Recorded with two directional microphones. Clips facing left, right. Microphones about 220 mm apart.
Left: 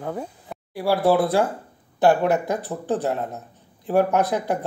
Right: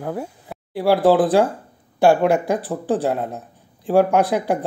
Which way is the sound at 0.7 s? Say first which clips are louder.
Right 4 dB; 15° right (ahead or behind).